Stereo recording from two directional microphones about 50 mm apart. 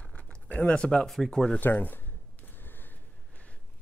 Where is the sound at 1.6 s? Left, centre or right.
Left.